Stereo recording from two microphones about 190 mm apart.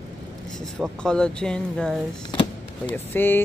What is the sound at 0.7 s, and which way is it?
Speech, 5° left (ahead or behind).